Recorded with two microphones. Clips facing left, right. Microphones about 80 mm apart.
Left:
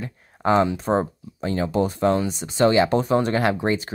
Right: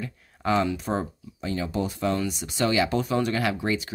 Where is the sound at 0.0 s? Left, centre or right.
Left.